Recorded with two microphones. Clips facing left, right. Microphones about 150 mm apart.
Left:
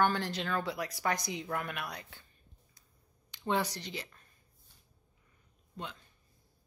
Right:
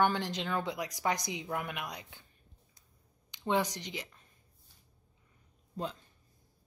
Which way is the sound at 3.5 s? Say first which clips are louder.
Right 1 dB; 15° right (ahead or behind).